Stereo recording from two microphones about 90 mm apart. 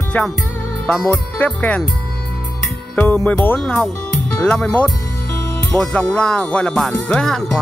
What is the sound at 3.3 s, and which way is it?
Speech, 20° left (ahead or behind).